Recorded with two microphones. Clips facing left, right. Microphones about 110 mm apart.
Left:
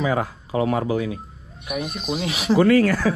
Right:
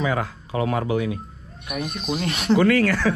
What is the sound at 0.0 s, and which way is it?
Speech, 30° left (ahead or behind).